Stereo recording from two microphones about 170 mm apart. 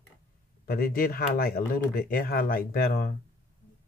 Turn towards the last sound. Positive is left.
turn(degrees=60)  # may be behind; listen again after turning